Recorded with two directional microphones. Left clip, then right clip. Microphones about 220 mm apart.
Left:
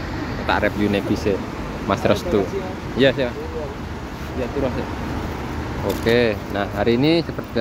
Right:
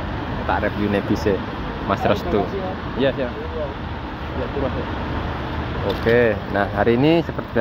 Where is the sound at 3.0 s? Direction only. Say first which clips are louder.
Left 4 dB; 35° left (ahead or behind).